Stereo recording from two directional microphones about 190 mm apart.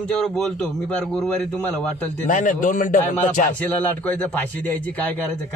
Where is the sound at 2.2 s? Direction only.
45° left (ahead or behind).